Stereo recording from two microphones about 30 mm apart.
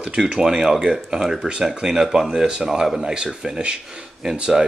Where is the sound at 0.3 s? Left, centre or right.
Centre.